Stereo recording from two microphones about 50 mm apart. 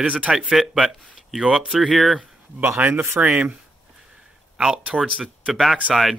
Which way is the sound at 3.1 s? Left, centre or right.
Centre.